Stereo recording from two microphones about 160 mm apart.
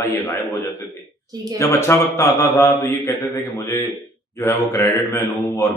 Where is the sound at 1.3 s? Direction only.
25° right (ahead or behind).